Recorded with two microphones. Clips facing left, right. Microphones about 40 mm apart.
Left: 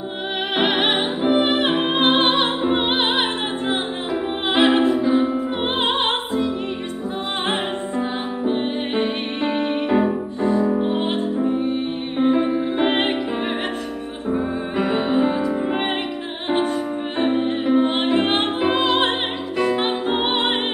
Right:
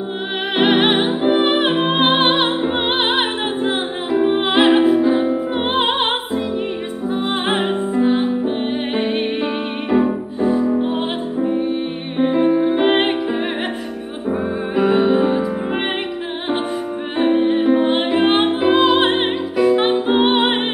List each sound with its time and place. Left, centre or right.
0.6 s music: centre
4.1 s music: centre
4.5 s music: centre
14.8 s music: centre
17.2 s music: centre